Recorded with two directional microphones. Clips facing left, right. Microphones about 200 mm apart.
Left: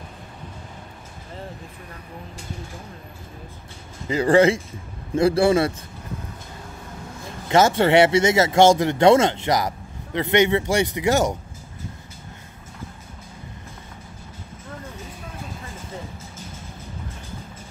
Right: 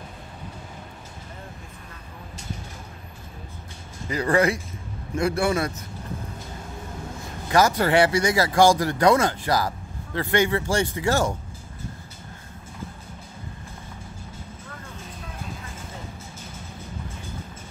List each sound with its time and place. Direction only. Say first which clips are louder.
4.1 s a man's voice: left 5 dB; 25° left (ahead or behind)
7.4 s speech: left 3 dB; 25° left (ahead or behind)